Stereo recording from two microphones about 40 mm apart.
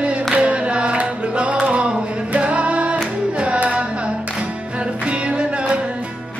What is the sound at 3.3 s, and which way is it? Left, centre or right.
Music, right.